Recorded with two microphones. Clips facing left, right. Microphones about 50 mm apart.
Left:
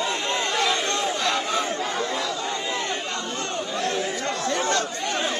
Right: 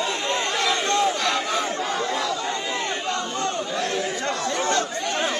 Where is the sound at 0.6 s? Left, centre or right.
Right.